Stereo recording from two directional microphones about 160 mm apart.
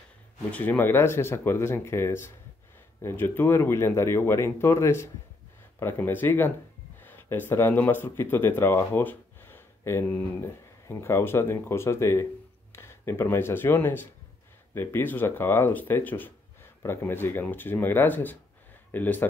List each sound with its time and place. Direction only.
0.5 s speech: 10° left (ahead or behind)